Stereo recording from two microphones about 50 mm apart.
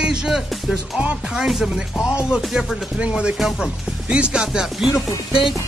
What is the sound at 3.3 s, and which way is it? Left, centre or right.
Speech, centre.